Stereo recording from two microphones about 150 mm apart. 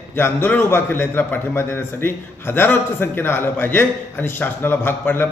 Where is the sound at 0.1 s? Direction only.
15° left (ahead or behind).